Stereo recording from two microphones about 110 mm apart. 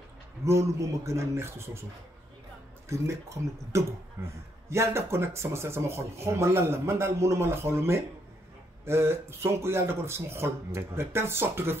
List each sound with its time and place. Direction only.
0.5 s speech: 25° right (ahead or behind)
2.9 s speech: 25° right (ahead or behind)